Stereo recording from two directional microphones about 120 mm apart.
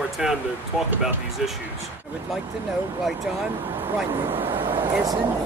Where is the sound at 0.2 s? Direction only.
5° right (ahead or behind).